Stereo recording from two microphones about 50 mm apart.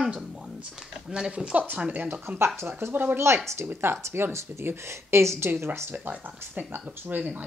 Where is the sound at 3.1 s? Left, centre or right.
Right.